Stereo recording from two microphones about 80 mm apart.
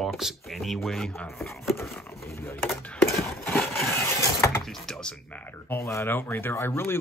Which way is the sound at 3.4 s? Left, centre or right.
Centre.